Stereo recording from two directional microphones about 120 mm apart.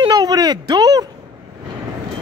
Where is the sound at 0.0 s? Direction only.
35° right (ahead or behind).